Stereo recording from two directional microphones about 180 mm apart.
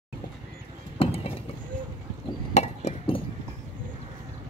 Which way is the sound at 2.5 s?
35° left (ahead or behind).